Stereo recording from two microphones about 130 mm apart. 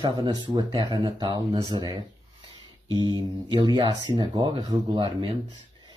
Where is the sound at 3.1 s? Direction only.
35° right (ahead or behind).